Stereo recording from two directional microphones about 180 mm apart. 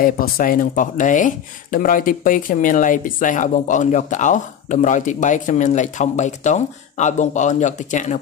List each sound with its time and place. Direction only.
0.0 s speech: 50° left (ahead or behind)